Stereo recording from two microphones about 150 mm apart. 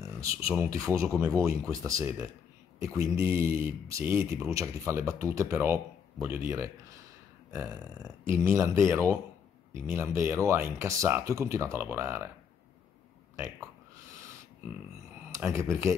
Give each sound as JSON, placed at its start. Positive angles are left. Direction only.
{"t": 0.0, "sound": "speech", "side_deg": -20}
{"t": 15.3, "sound": "speech", "side_deg": -20}